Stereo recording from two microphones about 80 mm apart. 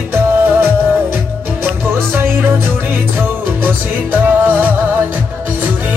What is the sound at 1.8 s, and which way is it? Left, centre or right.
Music, right.